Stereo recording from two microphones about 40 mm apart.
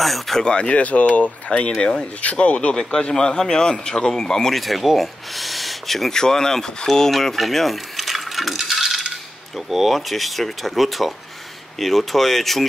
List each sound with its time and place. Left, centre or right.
0.0 s speech: centre
0.4 s speech: left
2.7 s speech: centre
4.6 s speech: centre
6.1 s speech: centre